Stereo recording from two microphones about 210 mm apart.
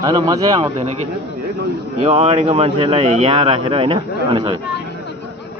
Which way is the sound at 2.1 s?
30° right (ahead or behind).